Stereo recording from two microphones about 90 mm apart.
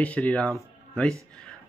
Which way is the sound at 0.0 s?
15° left (ahead or behind).